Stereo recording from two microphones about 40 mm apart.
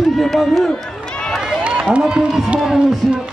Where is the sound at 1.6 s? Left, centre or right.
Right.